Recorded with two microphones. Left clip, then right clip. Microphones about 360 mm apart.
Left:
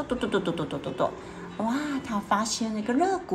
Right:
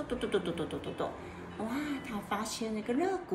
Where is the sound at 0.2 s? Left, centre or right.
Centre.